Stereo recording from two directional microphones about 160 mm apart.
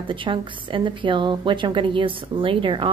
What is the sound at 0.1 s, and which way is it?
A woman's voice, 30° right (ahead or behind).